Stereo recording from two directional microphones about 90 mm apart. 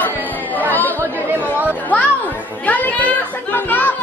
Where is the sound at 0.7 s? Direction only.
20° left (ahead or behind).